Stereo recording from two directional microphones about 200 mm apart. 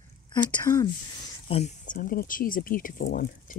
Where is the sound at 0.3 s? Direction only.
20° left (ahead or behind).